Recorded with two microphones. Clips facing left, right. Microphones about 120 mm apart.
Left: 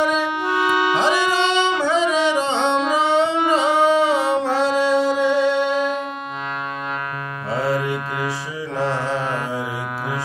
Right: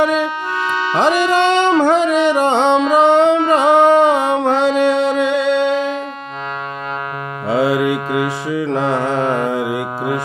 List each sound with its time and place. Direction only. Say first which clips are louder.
0.0 s accordion: right 4 dB; 50° right (ahead or behind)
0.5 s accordion: left 2 dB; 15° left (ahead or behind)
0.9 s music: right 5 dB; 50° right (ahead or behind); by 5.7 s 70° right (ahead or behind)
7.4 s mantra: right 7 dB; 75° right (ahead or behind)